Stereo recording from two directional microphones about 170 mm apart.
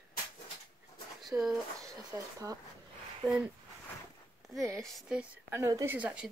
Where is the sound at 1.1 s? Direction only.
Centre (ahead or behind).